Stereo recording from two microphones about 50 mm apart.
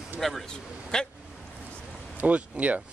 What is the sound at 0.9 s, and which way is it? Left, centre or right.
Speech, centre.